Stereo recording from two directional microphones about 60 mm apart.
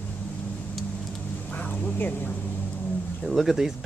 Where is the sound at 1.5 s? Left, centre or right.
Left.